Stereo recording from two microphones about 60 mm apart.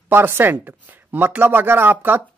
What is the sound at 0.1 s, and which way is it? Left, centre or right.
Speech, right.